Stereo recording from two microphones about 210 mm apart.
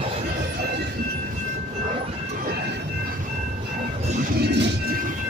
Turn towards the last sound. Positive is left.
turn(degrees=-55)  # may be behind; listen again after turning